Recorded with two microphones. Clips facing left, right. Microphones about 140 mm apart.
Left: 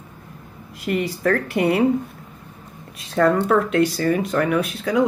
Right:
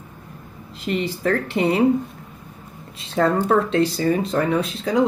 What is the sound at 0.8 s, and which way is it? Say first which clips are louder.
Speech: left 1 dB; 25° right (ahead or behind).